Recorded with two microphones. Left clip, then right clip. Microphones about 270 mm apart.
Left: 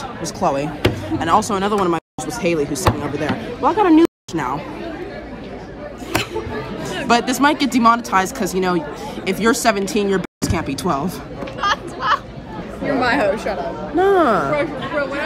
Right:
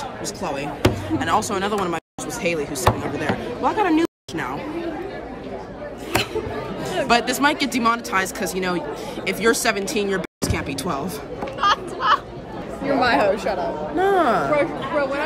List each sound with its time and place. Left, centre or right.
0.2 s speech: centre
7.1 s speech: centre
11.6 s a sound: centre
12.8 s speech: centre
13.9 s speech: centre
14.5 s a woman's voice: right